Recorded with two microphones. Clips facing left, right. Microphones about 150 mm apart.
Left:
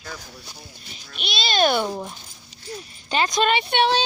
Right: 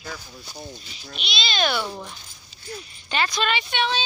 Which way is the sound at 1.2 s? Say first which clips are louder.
Left 5 dB; 45° left (ahead or behind).